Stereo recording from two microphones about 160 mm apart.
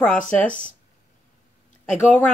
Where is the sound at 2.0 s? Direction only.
10° left (ahead or behind).